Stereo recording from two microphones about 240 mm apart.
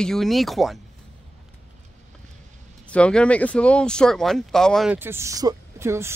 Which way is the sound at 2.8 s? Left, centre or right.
Centre.